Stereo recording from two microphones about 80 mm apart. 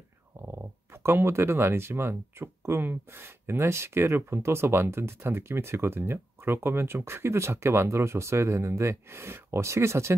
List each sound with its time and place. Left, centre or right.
0.5 s speech: right